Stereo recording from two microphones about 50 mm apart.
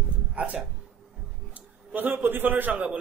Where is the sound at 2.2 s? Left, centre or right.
Right.